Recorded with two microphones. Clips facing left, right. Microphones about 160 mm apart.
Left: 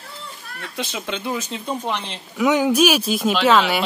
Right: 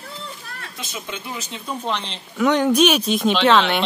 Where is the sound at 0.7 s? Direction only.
65° left (ahead or behind).